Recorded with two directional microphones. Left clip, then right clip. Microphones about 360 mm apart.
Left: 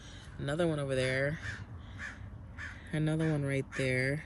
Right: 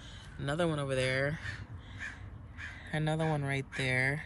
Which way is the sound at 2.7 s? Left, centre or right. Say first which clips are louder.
Even; centre.